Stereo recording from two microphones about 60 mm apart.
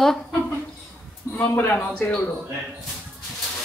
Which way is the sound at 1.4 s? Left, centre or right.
Left.